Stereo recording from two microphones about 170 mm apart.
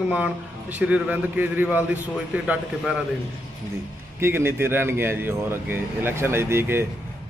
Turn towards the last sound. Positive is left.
turn(degrees=-15)  # may be behind; listen again after turning